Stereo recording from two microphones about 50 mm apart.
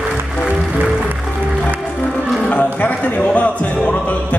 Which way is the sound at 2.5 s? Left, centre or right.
Left.